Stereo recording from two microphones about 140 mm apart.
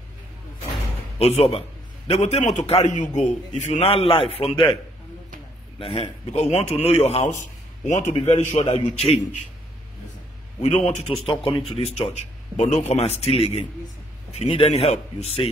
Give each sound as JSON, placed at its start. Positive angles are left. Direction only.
{"t": 1.2, "sound": "speech", "side_deg": 45}
{"t": 5.8, "sound": "speech", "side_deg": 40}
{"t": 10.6, "sound": "speech", "side_deg": 45}